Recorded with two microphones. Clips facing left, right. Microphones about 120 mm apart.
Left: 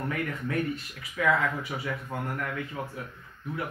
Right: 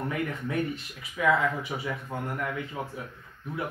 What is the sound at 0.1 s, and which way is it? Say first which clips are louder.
Speech: even; 20° right (ahead or behind).